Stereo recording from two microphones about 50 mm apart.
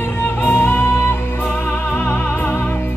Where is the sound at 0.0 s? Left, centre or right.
Left.